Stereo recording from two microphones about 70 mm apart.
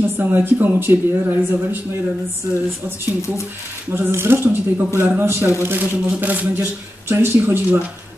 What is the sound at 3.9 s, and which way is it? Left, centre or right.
A man's voice, right.